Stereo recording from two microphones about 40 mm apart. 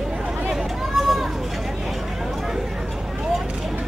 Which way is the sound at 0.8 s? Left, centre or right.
Centre.